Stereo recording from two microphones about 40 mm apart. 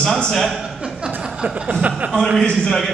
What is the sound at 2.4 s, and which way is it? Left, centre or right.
Speech, left.